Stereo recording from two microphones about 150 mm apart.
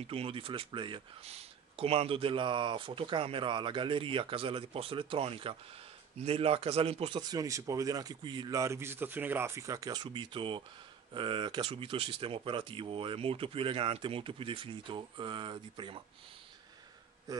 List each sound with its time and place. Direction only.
0.0 s speech: 40° right (ahead or behind)
17.3 s a man's voice: 25° right (ahead or behind)